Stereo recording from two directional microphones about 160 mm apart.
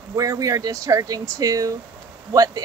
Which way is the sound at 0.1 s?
20° right (ahead or behind).